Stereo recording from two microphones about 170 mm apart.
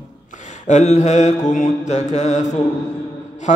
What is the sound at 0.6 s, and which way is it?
Mantra, 45° left (ahead or behind).